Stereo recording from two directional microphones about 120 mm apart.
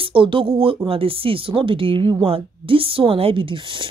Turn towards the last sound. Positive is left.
turn(degrees=-45)  # may be behind; listen again after turning